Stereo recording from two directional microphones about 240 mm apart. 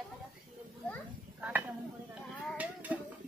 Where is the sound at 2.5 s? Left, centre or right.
Centre.